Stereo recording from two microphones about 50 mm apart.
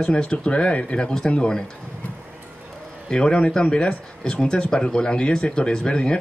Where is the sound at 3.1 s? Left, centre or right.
Centre.